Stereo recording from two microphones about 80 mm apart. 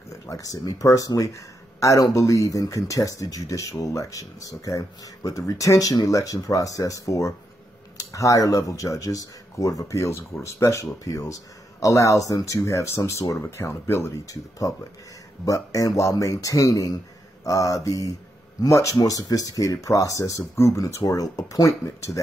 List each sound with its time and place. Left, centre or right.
0.3 s speech: left
14.1 s speech: left